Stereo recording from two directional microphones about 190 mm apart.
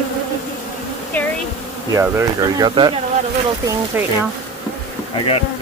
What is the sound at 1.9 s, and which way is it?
Speech, 15° right (ahead or behind).